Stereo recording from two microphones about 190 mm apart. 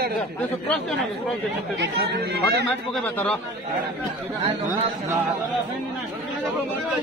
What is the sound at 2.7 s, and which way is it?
Speech, 5° left (ahead or behind).